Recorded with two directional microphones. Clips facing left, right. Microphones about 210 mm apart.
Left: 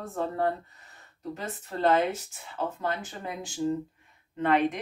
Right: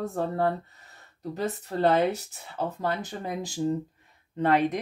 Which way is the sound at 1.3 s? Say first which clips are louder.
Right 6 dB; 40° right (ahead or behind).